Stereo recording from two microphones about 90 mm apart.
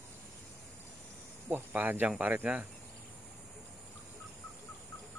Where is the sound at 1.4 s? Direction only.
20° right (ahead or behind).